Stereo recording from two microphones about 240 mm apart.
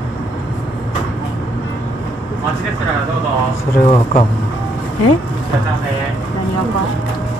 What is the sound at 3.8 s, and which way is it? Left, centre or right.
Speech, left.